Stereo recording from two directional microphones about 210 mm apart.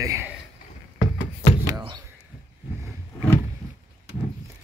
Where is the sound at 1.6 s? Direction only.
20° right (ahead or behind).